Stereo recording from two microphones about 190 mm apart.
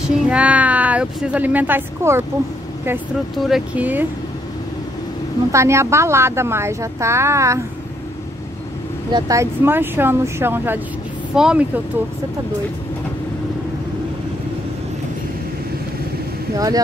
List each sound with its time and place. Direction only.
0.3 s speech: 5° right (ahead or behind)
3.3 s a woman's voice: centre (ahead or behind)
5.5 s a woman's voice: 15° right (ahead or behind)
9.1 s a woman's voice: 15° right (ahead or behind)
16.5 s speech: 20° right (ahead or behind)